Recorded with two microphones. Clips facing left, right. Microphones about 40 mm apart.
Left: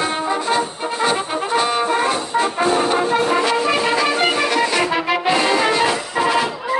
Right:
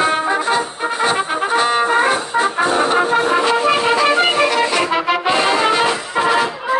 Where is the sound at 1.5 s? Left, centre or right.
Right.